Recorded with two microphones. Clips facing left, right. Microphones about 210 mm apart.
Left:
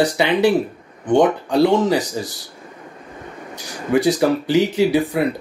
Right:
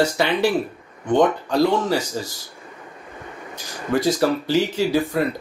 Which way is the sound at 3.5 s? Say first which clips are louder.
Left 4 dB; 15° left (ahead or behind).